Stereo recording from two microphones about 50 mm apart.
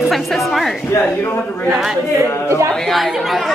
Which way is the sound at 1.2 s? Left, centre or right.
Left.